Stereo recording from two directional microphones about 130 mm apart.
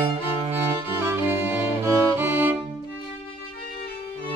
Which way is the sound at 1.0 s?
15° right (ahead or behind).